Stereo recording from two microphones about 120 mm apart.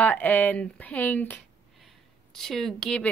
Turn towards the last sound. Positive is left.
turn(degrees=5)  # may be behind; listen again after turning